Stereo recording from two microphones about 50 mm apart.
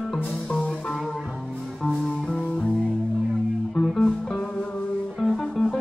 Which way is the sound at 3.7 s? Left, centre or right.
Centre.